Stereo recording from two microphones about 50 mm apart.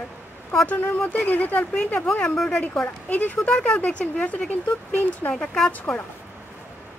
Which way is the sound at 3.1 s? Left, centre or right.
Left.